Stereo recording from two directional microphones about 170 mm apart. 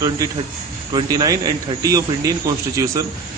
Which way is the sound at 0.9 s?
25° right (ahead or behind).